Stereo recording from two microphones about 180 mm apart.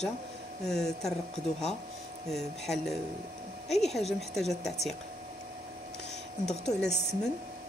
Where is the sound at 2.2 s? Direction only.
Centre (ahead or behind).